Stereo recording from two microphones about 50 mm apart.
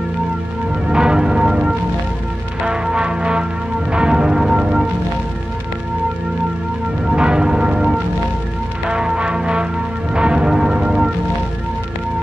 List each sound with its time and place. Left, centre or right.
0.8 s church bell: centre
2.6 s music: centre
3.9 s church bell: centre
7.1 s church bell: centre
8.8 s music: centre
10.1 s bell: centre